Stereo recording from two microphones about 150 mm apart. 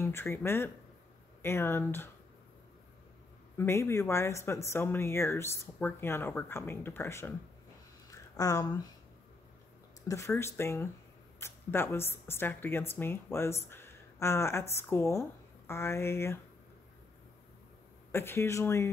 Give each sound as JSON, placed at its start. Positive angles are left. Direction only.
{"t": 0.0, "sound": "speech", "side_deg": 15}
{"t": 3.5, "sound": "speech", "side_deg": 20}
{"t": 8.1, "sound": "a sound", "side_deg": 20}
{"t": 10.0, "sound": "a woman's voice", "side_deg": 20}
{"t": 18.1, "sound": "speech", "side_deg": 15}